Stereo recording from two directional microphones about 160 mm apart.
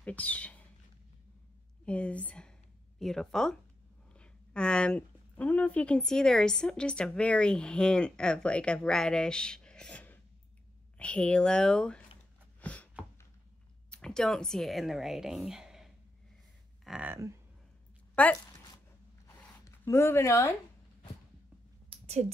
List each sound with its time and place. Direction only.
0.0 s speech: 10° left (ahead or behind)
1.9 s speech: 10° left (ahead or behind)
12.5 s a sound: 10° left (ahead or behind)
13.8 s speech: 5° left (ahead or behind)
17.1 s speech: 15° right (ahead or behind)
18.1 s speech: 10° left (ahead or behind)
19.2 s zipper: 15° left (ahead or behind)
21.8 s a sound: 40° right (ahead or behind)